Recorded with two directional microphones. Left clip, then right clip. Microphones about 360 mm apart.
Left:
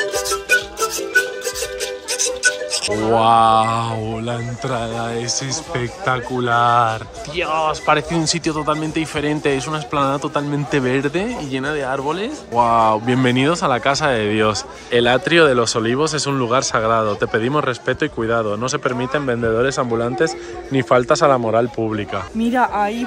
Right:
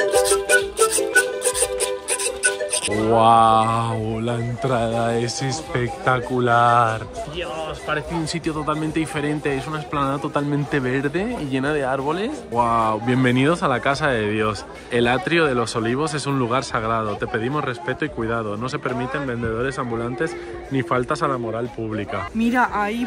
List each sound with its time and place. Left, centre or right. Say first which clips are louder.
0.0 s music: right 3 dB; right
2.1 s music: left 6 dB; centre
3.1 s speech: left 1 dB; centre
7.3 s speech: left 11 dB; centre